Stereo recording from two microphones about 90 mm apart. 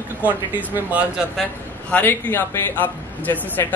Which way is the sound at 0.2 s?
20° right (ahead or behind).